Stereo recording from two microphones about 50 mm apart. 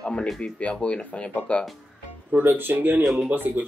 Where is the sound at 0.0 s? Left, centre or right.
Centre.